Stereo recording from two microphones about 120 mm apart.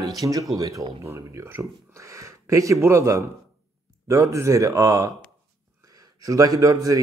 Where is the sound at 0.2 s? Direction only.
30° right (ahead or behind).